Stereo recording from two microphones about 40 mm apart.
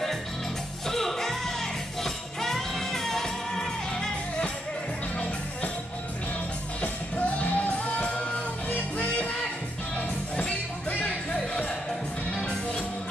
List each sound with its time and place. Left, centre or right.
0.8 s music: centre
6.8 s music: left; by 12.8 s centre